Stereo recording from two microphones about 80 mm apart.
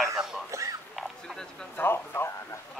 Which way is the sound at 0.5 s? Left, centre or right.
Right.